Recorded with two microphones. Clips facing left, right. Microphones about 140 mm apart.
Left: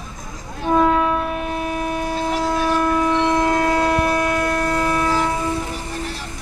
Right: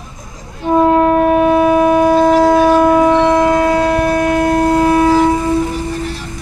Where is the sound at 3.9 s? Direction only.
35° right (ahead or behind).